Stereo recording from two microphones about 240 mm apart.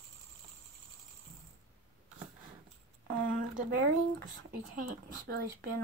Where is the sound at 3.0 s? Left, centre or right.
Right.